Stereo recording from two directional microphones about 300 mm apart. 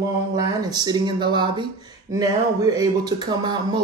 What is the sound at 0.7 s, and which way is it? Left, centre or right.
Speech, centre.